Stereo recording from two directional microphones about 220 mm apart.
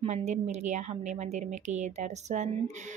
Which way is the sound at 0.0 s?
30° right (ahead or behind).